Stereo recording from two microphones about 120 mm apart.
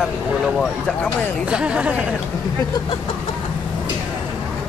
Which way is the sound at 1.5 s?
10° right (ahead or behind).